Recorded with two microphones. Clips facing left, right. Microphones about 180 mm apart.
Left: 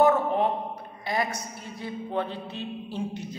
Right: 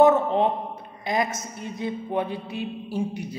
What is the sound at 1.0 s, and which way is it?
A man's voice, 20° right (ahead or behind).